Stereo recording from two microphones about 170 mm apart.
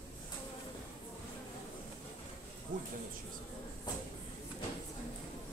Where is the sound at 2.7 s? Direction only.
90° right.